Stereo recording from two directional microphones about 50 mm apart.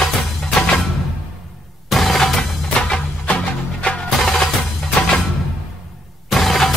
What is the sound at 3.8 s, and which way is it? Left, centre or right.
Music, centre.